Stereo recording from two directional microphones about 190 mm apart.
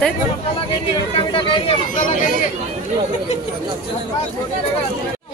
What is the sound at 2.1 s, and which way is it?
Speech, 45° left (ahead or behind).